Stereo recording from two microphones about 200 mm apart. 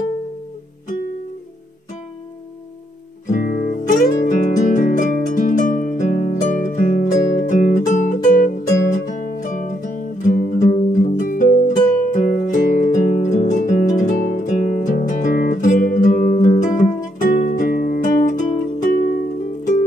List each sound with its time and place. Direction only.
3.3 s music: 45° left (ahead or behind)